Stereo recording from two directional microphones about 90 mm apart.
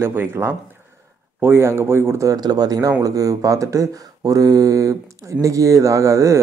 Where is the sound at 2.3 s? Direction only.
45° right (ahead or behind).